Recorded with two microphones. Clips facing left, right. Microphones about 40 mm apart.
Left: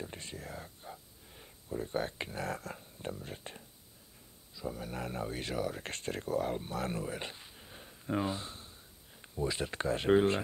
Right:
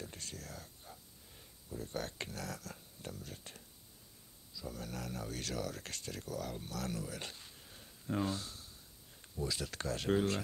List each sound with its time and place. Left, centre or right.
0.0 s whispering: left
2.4 s speech: left
5.9 s speech: left